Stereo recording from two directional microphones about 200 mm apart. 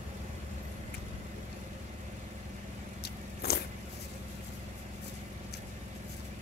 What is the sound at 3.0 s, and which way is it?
Biting, 50° left (ahead or behind).